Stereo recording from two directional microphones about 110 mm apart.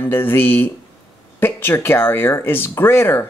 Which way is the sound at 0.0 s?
20° left (ahead or behind).